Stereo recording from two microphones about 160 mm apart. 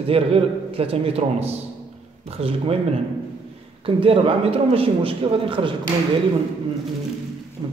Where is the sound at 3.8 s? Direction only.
35° right (ahead or behind).